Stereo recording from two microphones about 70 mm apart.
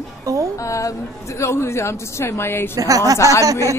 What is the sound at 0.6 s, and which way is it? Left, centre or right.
A woman's voice, left.